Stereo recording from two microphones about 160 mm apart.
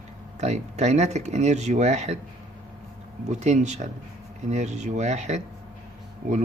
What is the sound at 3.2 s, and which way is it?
Speech, 45° right (ahead or behind).